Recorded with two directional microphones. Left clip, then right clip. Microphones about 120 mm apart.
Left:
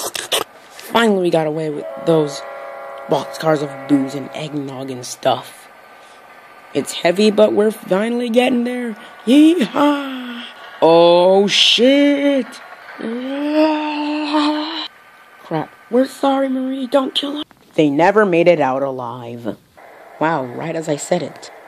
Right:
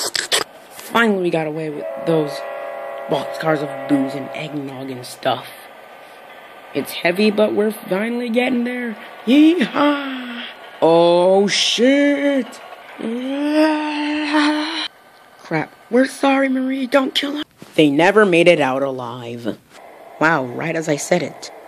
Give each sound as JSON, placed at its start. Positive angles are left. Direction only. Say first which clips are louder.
{"t": 0.0, "sound": "a sound", "louder": "right 1 dB", "side_deg": 20}
{"t": 0.9, "sound": "speech", "louder": "left 2 dB", "side_deg": 35}
{"t": 1.8, "sound": "speech", "louder": "right 1 dB", "side_deg": -15}
{"t": 2.4, "sound": "a sound", "louder": "right 3 dB", "side_deg": -25}
{"t": 3.1, "sound": "speech", "louder": "left 3 dB", "side_deg": 30}
{"t": 4.6, "sound": "speech", "louder": "left 2 dB", "side_deg": 30}
{"t": 6.9, "sound": "speech", "louder": "left 2 dB", "side_deg": 30}
{"t": 13.1, "sound": "a sound", "louder": "even", "side_deg": 0}
{"t": 15.4, "sound": "speech", "louder": "even", "side_deg": 5}
{"t": 20.2, "sound": "a man's voice", "louder": "right 2 dB", "side_deg": 5}